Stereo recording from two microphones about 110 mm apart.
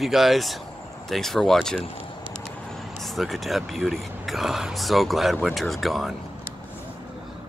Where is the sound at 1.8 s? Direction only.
55° left (ahead or behind).